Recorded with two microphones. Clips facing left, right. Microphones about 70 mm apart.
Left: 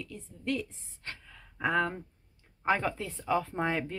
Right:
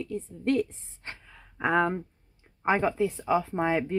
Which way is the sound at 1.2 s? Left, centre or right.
Centre.